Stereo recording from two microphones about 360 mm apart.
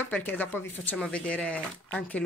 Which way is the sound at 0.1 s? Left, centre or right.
Centre.